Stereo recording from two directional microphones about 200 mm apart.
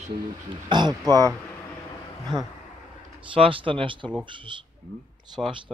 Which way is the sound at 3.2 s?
25° right (ahead or behind).